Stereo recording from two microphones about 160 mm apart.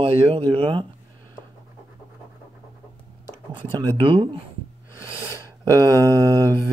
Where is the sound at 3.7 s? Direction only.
30° right (ahead or behind).